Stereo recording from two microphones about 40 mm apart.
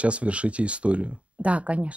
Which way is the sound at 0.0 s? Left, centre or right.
Right.